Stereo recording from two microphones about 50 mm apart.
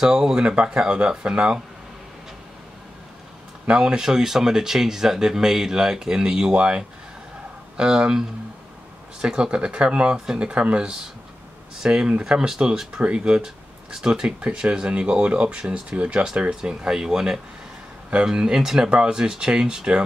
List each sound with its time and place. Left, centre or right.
0.0 s speech: centre
3.6 s speech: centre